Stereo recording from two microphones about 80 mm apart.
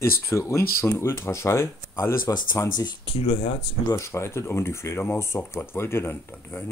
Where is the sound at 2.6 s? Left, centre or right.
Left.